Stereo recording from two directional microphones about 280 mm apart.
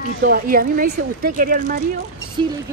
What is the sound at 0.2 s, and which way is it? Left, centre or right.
Speech, right.